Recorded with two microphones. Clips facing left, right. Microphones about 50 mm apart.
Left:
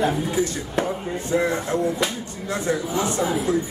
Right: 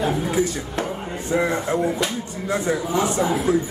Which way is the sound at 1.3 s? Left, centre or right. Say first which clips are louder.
Right 1 dB; centre.